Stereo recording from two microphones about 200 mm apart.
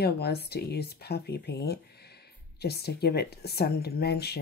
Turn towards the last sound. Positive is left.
turn(degrees=55)  # may be behind; listen again after turning